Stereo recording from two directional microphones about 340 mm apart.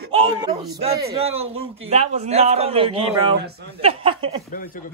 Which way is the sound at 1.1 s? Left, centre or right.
Centre.